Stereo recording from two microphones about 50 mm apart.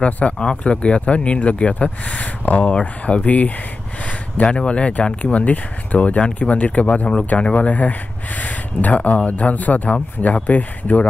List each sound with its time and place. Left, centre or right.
0.0 s speech: left